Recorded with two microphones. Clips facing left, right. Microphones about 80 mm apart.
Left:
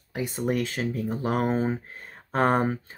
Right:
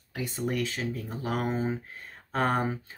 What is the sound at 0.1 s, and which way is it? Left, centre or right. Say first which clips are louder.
Speech: left 4 dB; left.